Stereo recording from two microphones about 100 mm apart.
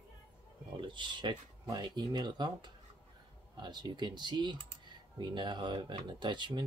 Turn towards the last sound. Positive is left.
turn(degrees=-50)  # may be behind; listen again after turning